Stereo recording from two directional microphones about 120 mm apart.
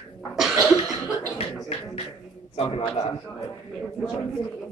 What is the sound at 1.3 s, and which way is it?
Speech, 55° left (ahead or behind).